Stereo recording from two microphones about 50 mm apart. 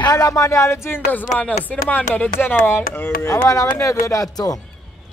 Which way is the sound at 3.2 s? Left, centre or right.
Left.